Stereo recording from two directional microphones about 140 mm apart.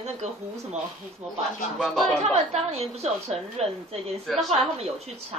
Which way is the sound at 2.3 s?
50° right (ahead or behind).